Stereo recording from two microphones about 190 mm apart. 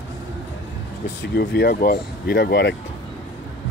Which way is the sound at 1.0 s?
65° left (ahead or behind).